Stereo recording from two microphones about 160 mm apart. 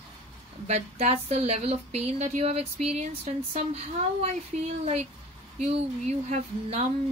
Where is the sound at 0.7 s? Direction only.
45° right (ahead or behind).